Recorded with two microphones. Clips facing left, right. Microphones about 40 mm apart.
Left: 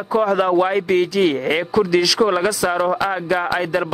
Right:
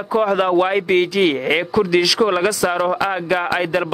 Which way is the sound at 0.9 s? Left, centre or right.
Centre.